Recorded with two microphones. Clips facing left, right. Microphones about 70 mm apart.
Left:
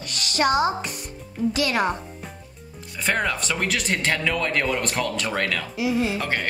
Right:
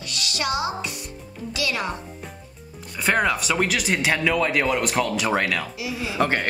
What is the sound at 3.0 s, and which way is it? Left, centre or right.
A woman's voice, centre.